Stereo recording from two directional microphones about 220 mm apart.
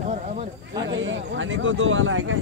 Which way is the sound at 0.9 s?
60° right (ahead or behind).